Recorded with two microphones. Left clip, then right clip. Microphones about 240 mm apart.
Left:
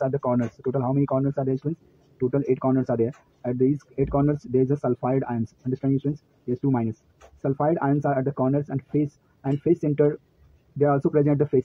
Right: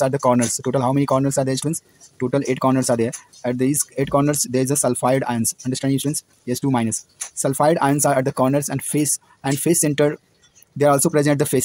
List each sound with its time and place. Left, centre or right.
0.0 s speech: right